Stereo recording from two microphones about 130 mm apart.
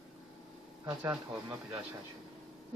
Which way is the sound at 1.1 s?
10° right (ahead or behind).